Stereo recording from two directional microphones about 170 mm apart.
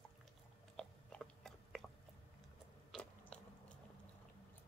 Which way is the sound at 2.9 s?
5° left (ahead or behind).